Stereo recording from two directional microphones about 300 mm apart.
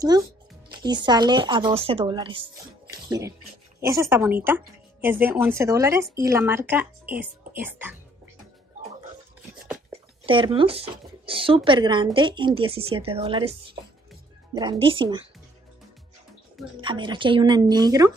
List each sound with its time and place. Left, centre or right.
0.1 s speech: centre
10.2 s speech: centre
16.8 s speech: centre